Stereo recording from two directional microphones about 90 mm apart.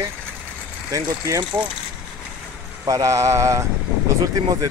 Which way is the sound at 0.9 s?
35° right (ahead or behind).